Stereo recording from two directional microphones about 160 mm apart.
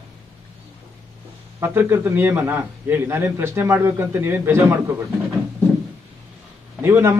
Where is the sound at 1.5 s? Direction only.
15° right (ahead or behind).